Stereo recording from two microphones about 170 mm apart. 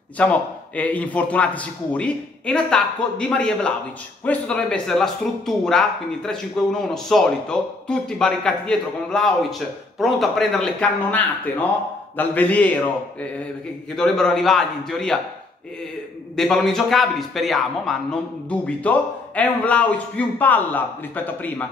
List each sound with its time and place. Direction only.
0.2 s speech: 10° left (ahead or behind)
13.9 s speech: 5° left (ahead or behind)
16.3 s speech: centre (ahead or behind)